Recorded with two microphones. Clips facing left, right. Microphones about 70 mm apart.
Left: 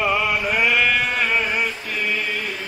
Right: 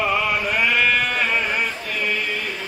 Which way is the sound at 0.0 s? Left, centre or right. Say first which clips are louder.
Even; centre.